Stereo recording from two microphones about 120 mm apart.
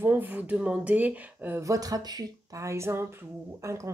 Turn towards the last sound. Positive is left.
turn(degrees=-25)  # may be behind; listen again after turning